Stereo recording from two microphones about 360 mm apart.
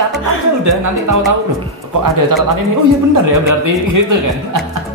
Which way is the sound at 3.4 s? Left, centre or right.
Right.